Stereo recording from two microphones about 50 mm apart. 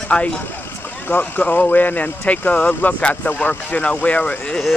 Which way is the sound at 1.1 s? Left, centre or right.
Left.